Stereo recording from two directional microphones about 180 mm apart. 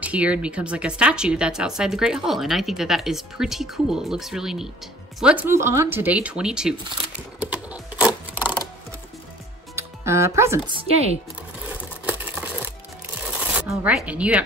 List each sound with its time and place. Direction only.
0.0 s speech: 5° right (ahead or behind)
7.3 s typing: 5° right (ahead or behind)
9.8 s speech: 15° right (ahead or behind)
11.7 s a sound: 10° right (ahead or behind)
13.5 s speech: 10° right (ahead or behind)